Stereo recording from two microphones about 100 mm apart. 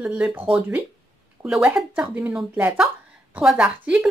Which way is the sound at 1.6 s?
10° right (ahead or behind).